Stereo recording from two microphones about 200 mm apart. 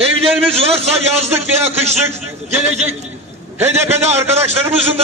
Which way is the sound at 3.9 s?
35° right (ahead or behind).